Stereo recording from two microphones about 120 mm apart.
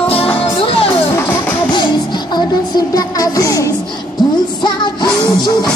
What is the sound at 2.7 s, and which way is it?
Music, 30° left (ahead or behind).